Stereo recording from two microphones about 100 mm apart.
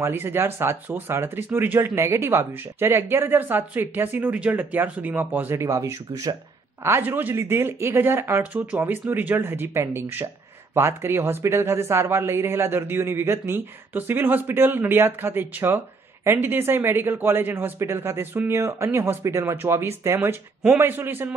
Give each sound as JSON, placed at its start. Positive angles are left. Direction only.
{"t": 0.0, "sound": "speech", "side_deg": -20}
{"t": 6.8, "sound": "speech", "side_deg": -20}